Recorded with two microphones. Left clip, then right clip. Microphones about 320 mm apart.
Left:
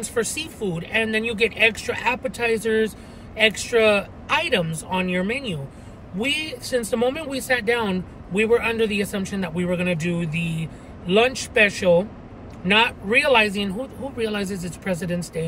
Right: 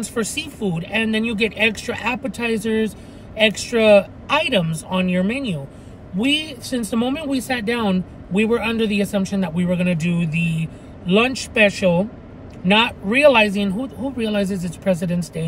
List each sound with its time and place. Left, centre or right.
0.1 s speech: centre
10.4 s speech: centre
11.1 s speech: centre